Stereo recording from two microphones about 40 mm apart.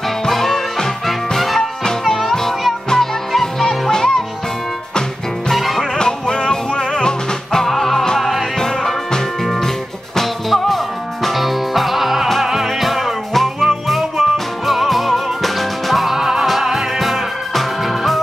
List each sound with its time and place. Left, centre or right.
0.3 s music: centre
1.6 s music: centre
5.5 s music: centre
5.8 s music: centre
7.6 s music: centre
8.2 s music: centre
8.5 s music: centre